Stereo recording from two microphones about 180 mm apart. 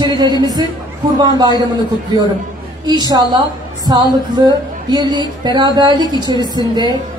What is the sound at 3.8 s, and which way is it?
A woman's voice, 25° right (ahead or behind).